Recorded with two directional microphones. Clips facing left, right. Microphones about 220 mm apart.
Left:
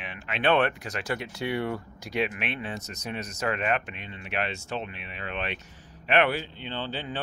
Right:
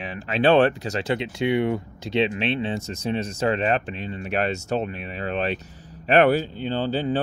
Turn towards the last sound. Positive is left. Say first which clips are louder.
# right 10 dB
turn(degrees=-40)  # may be behind; listen again after turning